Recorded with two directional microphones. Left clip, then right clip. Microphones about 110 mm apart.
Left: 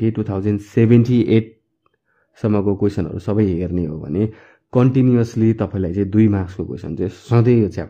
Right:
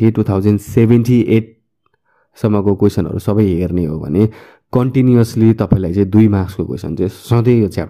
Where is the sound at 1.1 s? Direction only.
10° right (ahead or behind).